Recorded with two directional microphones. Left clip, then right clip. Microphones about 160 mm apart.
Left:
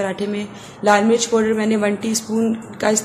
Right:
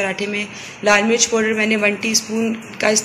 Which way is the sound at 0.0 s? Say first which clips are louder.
Right 2 dB; 20° left (ahead or behind).